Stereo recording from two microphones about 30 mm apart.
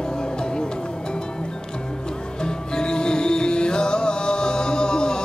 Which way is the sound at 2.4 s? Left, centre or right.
Left.